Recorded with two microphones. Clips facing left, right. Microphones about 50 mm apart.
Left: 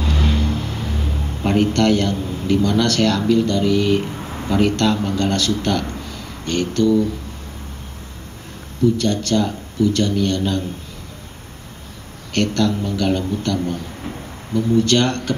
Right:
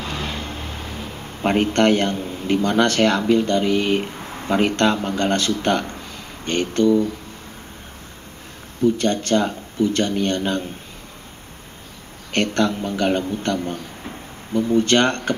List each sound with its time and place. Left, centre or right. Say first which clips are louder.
0.1 s vehicle: left 6 dB; right
1.4 s speech: even; right
8.8 s speech: left 1 dB; right
12.3 s speech: left 1 dB; right